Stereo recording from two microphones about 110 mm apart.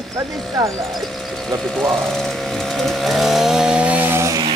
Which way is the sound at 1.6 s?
5° left (ahead or behind).